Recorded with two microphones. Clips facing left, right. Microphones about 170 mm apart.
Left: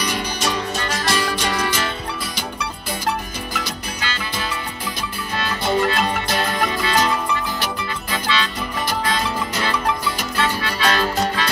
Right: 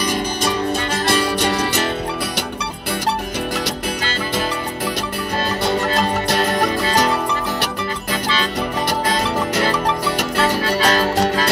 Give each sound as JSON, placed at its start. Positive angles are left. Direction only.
{"t": 0.0, "sound": "music", "side_deg": -50}
{"t": 1.0, "sound": "music", "side_deg": -60}
{"t": 4.0, "sound": "music", "side_deg": -45}
{"t": 6.5, "sound": "music", "side_deg": -40}
{"t": 9.6, "sound": "music", "side_deg": -40}
{"t": 10.0, "sound": "music", "side_deg": -75}
{"t": 10.8, "sound": "music", "side_deg": -40}